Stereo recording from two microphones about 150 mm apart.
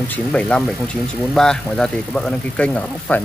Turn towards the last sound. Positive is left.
turn(degrees=10)  # may be behind; listen again after turning